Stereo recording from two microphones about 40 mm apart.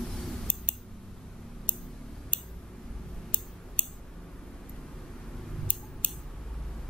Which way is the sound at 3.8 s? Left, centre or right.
Left.